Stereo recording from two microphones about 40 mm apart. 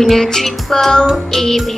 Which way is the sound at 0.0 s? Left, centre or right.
Centre.